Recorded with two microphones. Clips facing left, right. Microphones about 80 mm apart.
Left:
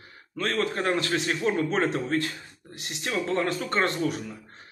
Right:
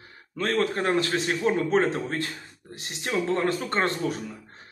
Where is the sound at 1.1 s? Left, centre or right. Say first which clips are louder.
Right 1 dB; centre.